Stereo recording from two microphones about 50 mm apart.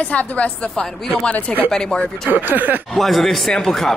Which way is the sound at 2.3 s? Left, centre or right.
Right.